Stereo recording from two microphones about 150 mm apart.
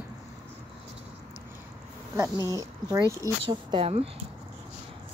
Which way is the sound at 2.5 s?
25° right (ahead or behind).